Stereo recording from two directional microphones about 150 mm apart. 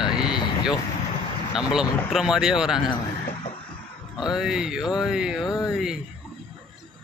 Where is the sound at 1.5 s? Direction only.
5° right (ahead or behind).